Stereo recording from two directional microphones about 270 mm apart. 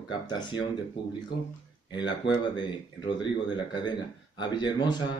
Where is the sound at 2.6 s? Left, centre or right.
Centre.